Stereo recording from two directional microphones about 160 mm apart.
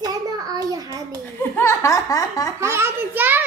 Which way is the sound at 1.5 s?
15° left (ahead or behind).